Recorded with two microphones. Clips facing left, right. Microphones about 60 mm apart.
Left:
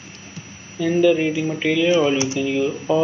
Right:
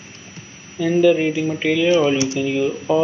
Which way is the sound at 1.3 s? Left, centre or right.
Centre.